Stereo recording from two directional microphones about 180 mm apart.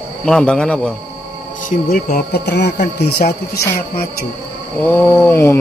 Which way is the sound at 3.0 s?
60° left (ahead or behind).